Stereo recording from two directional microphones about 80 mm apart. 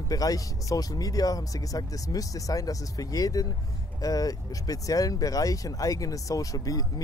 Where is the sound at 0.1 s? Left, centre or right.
Left.